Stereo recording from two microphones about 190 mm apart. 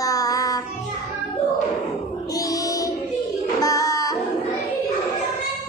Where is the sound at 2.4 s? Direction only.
20° left (ahead or behind).